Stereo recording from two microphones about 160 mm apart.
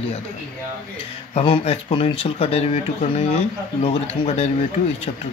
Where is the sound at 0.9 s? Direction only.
35° left (ahead or behind).